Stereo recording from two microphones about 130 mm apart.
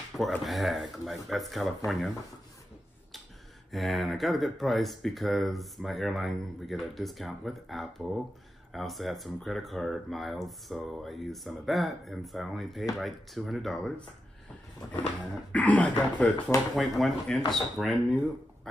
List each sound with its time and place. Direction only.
0.4 s speech: centre (ahead or behind)
3.7 s speech: centre (ahead or behind)
15.5 s speech: 10° left (ahead or behind)